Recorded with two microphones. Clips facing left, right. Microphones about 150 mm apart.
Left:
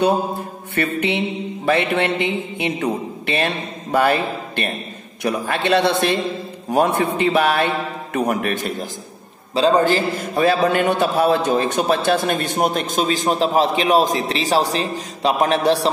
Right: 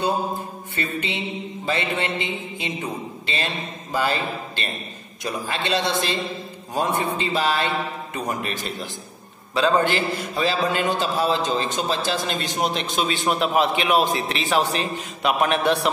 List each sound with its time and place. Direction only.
0.0 s mantra: 70° left (ahead or behind)
1.7 s a man's voice: 65° left (ahead or behind)
9.5 s a man's voice: 30° left (ahead or behind)